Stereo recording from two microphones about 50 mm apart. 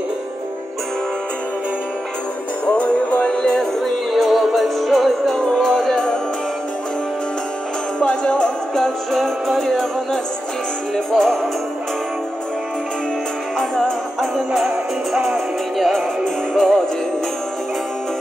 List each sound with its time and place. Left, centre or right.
2.6 s music: left
3.8 s music: centre
8.0 s music: left
9.1 s music: centre
11.1 s music: centre
14.3 s music: centre
16.5 s music: centre